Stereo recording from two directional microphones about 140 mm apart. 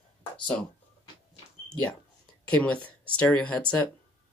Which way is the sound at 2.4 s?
10° left (ahead or behind).